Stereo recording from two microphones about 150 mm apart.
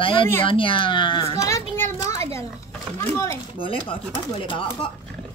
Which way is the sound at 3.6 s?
35° left (ahead or behind).